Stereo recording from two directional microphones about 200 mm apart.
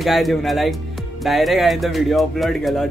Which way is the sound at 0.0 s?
Centre (ahead or behind).